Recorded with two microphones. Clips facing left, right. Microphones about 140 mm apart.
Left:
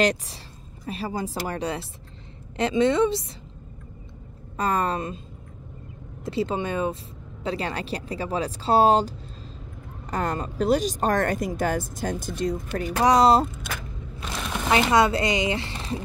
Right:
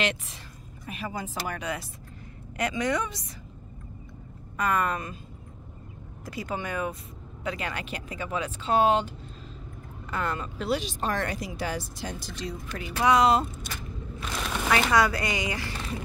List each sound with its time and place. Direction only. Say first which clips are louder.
0.0 s speech: left 7 dB; 35° left (ahead or behind)
4.6 s speech: left 2 dB; 30° left (ahead or behind)
6.2 s speech: left 7 dB; 25° left (ahead or behind)
14.7 s speech: left 4 dB; 25° left (ahead or behind)